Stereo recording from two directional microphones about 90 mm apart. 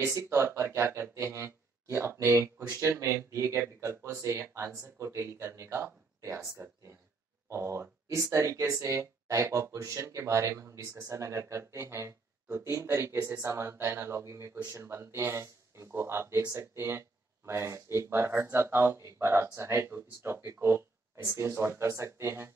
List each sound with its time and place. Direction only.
0.0 s speech: 35° right (ahead or behind)
7.4 s speech: 30° right (ahead or behind)